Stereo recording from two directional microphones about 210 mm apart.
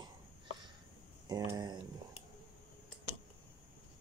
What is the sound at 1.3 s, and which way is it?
Speech, 20° right (ahead or behind).